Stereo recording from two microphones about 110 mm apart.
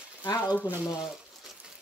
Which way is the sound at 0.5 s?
15° right (ahead or behind).